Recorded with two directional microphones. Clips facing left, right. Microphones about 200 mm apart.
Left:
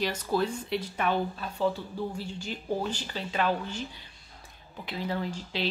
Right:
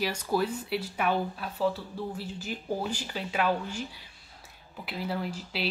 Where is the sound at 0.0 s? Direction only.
10° right (ahead or behind).